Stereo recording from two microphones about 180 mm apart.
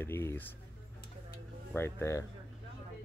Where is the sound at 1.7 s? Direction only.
15° left (ahead or behind).